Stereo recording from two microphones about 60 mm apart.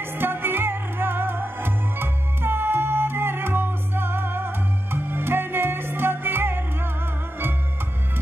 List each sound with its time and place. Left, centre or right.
0.2 s music: right